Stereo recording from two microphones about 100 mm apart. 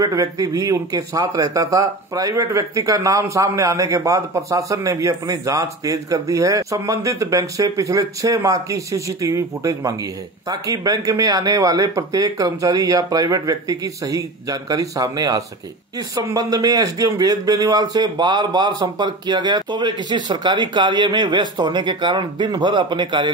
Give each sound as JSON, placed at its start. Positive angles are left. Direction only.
{"t": 0.0, "sound": "speech", "side_deg": -35}